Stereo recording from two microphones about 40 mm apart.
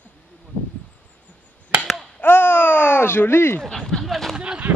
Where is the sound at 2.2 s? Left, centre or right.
Left.